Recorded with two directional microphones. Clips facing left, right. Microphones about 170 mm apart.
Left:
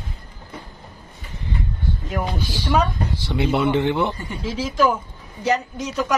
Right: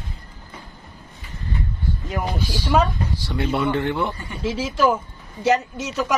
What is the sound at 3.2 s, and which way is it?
Speech, 20° left (ahead or behind).